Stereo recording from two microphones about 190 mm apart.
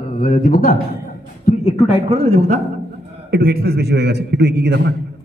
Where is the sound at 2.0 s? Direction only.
30° right (ahead or behind).